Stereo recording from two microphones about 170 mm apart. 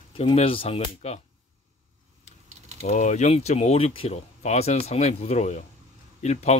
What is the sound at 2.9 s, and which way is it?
Speech, 45° left (ahead or behind).